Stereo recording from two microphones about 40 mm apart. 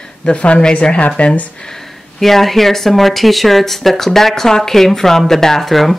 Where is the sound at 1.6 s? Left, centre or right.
Centre.